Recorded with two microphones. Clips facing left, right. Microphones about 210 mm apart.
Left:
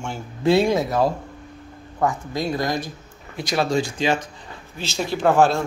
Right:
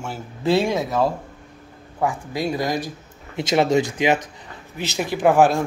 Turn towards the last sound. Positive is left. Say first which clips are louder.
# right 1 dB
turn(degrees=-15)  # may be behind; listen again after turning